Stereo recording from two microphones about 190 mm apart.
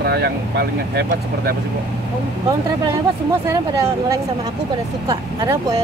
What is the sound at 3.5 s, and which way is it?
Speech, 15° right (ahead or behind).